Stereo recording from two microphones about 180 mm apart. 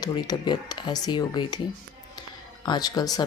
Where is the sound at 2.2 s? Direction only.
25° left (ahead or behind).